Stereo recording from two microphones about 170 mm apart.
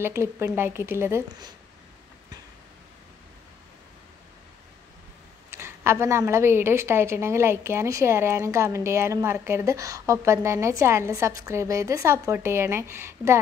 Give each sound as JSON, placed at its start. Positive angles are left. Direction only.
{"t": 0.0, "sound": "a woman's voice", "side_deg": -15}
{"t": 5.5, "sound": "a woman's voice", "side_deg": -15}